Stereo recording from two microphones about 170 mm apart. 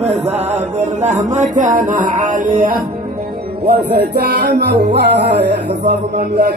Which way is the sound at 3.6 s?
70° right (ahead or behind).